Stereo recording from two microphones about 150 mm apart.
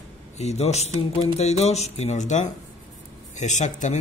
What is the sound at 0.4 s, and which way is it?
Speech, 45° left (ahead or behind).